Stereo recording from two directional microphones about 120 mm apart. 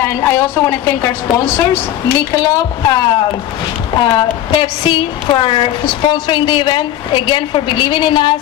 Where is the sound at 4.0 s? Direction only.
45° left (ahead or behind).